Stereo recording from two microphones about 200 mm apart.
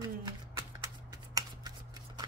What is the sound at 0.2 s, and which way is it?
Shuffling cards, 15° right (ahead or behind).